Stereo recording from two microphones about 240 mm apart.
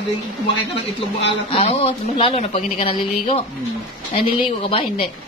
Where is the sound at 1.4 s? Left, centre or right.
Left.